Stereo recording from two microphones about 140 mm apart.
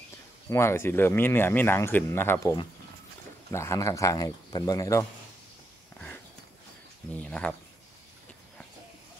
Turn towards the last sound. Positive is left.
turn(degrees=10)  # may be behind; listen again after turning